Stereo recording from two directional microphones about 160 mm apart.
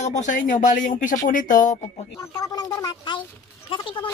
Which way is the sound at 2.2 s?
20° left (ahead or behind).